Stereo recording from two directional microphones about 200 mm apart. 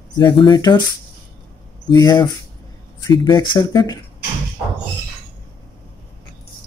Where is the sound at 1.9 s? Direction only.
20° left (ahead or behind).